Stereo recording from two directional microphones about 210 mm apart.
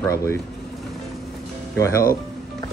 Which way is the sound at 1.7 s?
15° left (ahead or behind).